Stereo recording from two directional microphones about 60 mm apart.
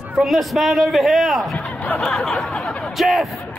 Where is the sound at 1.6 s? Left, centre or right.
Left.